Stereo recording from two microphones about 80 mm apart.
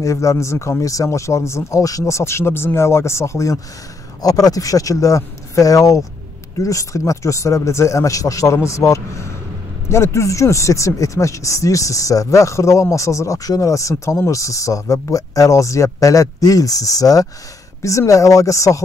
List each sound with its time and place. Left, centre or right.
0.0 s speech: left
4.2 s speech: left